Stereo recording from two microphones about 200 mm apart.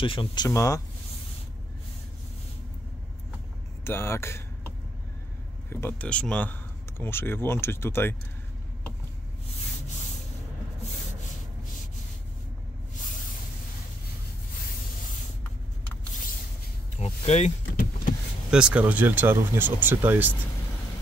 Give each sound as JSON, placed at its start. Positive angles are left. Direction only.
{"t": 0.0, "sound": "speech", "side_deg": 25}
{"t": 3.8, "sound": "speech", "side_deg": 10}
{"t": 5.7, "sound": "speech", "side_deg": 10}
{"t": 17.0, "sound": "a sound", "side_deg": 35}
{"t": 18.5, "sound": "speech", "side_deg": -5}